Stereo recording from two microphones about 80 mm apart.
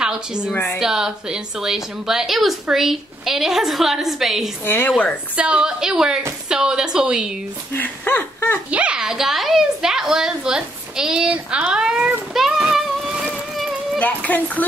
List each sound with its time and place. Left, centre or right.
0.0 s a woman's voice: centre
4.6 s speech: left
5.3 s a woman's voice: centre
7.7 s speech: left
8.6 s a woman's voice: centre
12.7 s boat: centre
13.9 s speech: centre